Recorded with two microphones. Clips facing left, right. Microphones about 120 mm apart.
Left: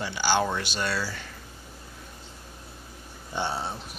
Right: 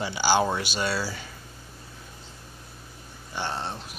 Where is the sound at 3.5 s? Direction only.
5° left (ahead or behind).